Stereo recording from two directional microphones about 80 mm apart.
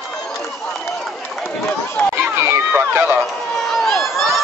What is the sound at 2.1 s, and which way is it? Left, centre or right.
Run, right.